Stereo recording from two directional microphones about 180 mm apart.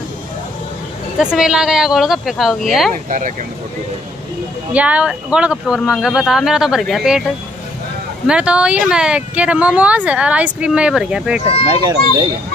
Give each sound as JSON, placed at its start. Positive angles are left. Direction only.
{"t": 1.2, "sound": "speech", "side_deg": -5}
{"t": 3.1, "sound": "speech", "side_deg": -45}
{"t": 4.7, "sound": "speech", "side_deg": -5}
{"t": 8.3, "sound": "speech", "side_deg": -5}
{"t": 11.8, "sound": "speech", "side_deg": -20}